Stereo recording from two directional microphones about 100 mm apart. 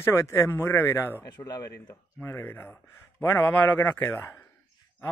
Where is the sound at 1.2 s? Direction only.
45° left (ahead or behind).